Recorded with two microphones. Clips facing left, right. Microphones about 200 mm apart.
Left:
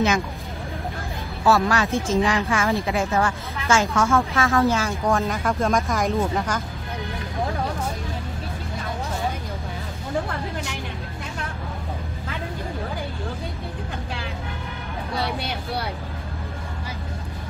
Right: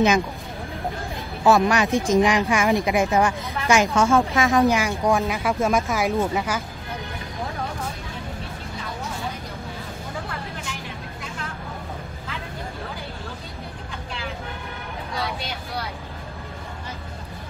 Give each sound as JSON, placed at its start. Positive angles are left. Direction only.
{"t": 1.4, "sound": "speech", "side_deg": -15}